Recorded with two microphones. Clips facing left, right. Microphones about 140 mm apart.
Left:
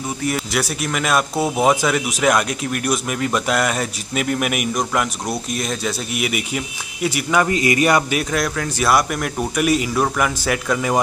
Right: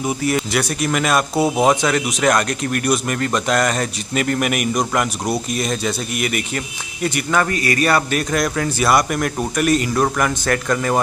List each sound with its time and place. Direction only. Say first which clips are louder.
0.2 s speech: left 1 dB; centre (ahead or behind)
7.4 s speech: left 2 dB; 20° left (ahead or behind)
8.2 s speech: right 2 dB; centre (ahead or behind)